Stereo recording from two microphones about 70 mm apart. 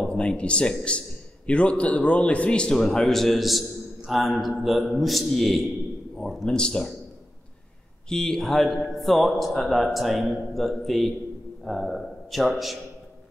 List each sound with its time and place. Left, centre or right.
0.0 s a man's voice: centre
8.1 s a man's voice: centre